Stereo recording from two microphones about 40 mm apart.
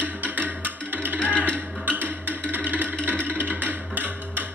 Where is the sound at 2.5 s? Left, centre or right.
Right.